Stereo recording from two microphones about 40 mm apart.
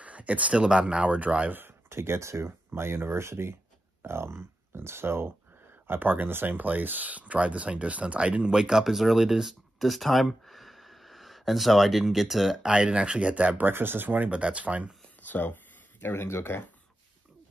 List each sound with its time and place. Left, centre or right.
0.0 s speech: right
1.5 s a sound: right
2.7 s speech: right
5.9 s speech: right
8.5 s speech: centre
12.6 s speech: right
13.7 s speech: right
14.3 s speech: right
15.2 s a sound: left
16.1 s speech: left